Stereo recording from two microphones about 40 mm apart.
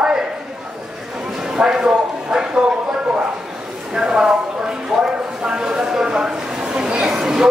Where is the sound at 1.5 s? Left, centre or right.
Centre.